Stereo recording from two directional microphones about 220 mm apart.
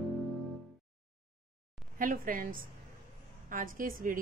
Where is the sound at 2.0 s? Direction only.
40° right (ahead or behind).